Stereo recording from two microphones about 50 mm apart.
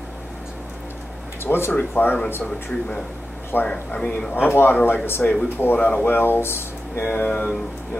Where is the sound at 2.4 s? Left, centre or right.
Centre.